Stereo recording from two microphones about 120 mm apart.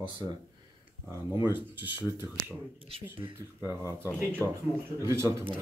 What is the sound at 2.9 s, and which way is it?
Speech, 50° right (ahead or behind).